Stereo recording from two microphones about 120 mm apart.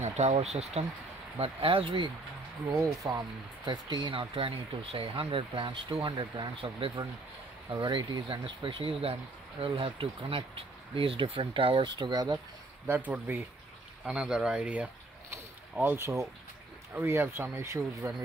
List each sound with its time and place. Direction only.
0.0 s speech: 70° right (ahead or behind)
1.4 s speech: 50° right (ahead or behind)
2.8 s speech: 30° right (ahead or behind)
12.8 s speech: 15° right (ahead or behind)